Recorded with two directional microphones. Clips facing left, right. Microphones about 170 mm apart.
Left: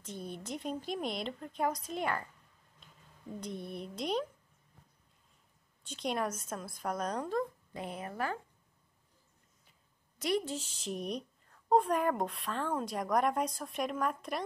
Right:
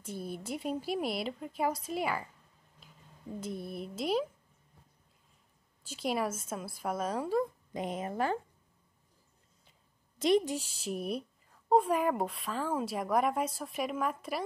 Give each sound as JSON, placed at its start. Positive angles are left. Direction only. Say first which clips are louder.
{"t": 0.0, "sound": "speech", "louder": "right 3 dB", "side_deg": -5}
{"t": 3.3, "sound": "a woman's voice", "louder": "right 2 dB", "side_deg": -5}
{"t": 5.9, "sound": "speech", "louder": "right 2 dB", "side_deg": -5}
{"t": 7.7, "sound": "a woman's voice", "louder": "right 9 dB", "side_deg": -20}
{"t": 10.1, "sound": "a woman's voice", "louder": "right 6 dB", "side_deg": -25}